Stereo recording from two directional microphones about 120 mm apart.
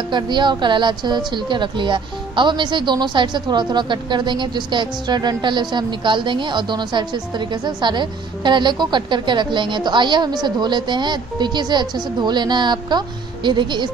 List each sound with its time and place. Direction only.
0.1 s a woman's voice: 40° right (ahead or behind)